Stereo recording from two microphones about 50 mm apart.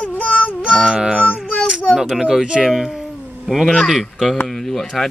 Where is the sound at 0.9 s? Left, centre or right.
Centre.